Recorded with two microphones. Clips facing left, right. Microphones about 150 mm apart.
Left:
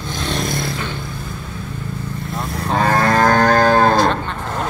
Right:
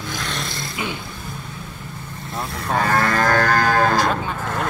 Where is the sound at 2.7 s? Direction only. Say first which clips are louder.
Left 4 dB; 25° left (ahead or behind).